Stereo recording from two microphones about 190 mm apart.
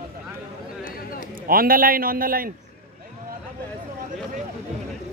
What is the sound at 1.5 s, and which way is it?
A man's voice, 50° right (ahead or behind).